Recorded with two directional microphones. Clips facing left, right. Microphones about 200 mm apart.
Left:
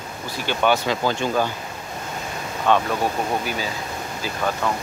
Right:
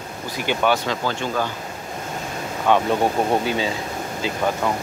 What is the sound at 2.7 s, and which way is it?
Speech, 10° right (ahead or behind).